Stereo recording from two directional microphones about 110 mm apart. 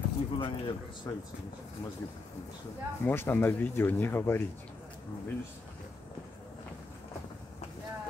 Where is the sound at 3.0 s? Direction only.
20° left (ahead or behind).